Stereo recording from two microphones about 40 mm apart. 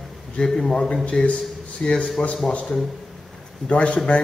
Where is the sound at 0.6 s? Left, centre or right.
Centre; by 2.0 s left.